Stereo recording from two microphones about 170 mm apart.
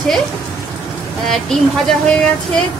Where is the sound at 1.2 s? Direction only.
Centre (ahead or behind).